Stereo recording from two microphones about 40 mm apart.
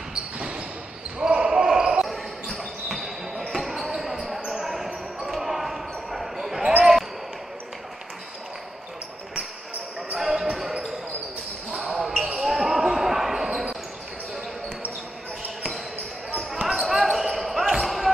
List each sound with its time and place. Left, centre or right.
0.1 s basketball bounce: right
2.9 s basketball bounce: centre
10.1 s basketball bounce: centre
11.9 s basketball bounce: centre
16.4 s basketball bounce: centre
16.8 s basketball bounce: centre